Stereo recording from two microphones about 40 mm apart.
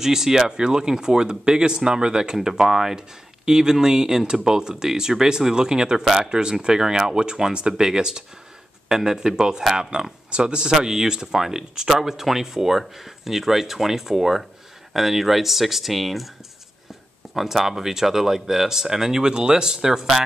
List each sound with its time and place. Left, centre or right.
0.0 s speech: centre
10.7 s speech: centre
17.3 s speech: centre